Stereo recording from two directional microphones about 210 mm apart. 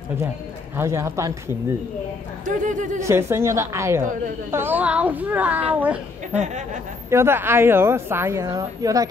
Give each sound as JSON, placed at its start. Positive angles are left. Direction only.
{"t": 0.7, "sound": "a woman's voice", "side_deg": -10}
{"t": 2.4, "sound": "speech", "side_deg": -35}
{"t": 3.0, "sound": "a woman's voice", "side_deg": -10}
{"t": 6.3, "sound": "speech", "side_deg": -35}
{"t": 7.1, "sound": "a woman's voice", "side_deg": -10}